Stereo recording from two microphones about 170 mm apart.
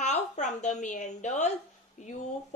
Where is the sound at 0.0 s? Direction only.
45° left (ahead or behind).